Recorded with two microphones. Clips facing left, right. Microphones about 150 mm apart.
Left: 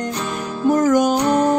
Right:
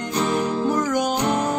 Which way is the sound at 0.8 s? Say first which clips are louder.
Left 7 dB; 50° left (ahead or behind).